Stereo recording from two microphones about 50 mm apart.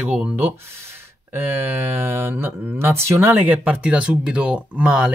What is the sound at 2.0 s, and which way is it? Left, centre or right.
Speech, right.